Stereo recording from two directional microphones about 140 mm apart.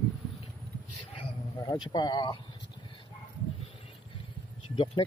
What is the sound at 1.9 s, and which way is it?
Speech, 30° left (ahead or behind).